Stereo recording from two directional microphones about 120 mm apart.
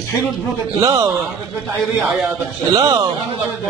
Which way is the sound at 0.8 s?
30° right (ahead or behind).